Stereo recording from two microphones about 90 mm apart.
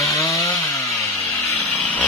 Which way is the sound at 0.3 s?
35° left (ahead or behind).